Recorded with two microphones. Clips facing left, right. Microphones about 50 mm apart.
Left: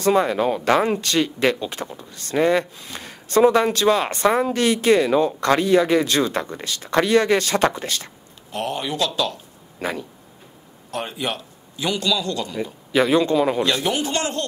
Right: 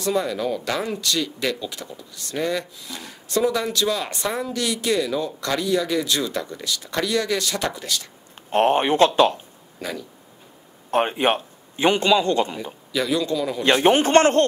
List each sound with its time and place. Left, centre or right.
0.0 s speech: left
8.5 s speech: right
9.8 s speech: left
10.9 s a man's voice: right
12.9 s speech: left
13.7 s speech: right